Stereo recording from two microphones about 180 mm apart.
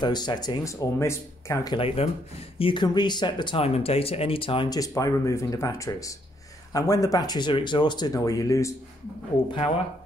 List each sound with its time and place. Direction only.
0.0 s speech: 25° left (ahead or behind)